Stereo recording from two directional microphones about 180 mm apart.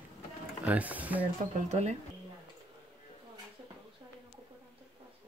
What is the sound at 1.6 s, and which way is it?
Speech, 40° right (ahead or behind).